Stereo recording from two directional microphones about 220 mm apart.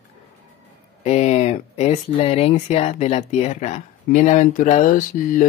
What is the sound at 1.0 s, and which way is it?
Speech, 30° left (ahead or behind).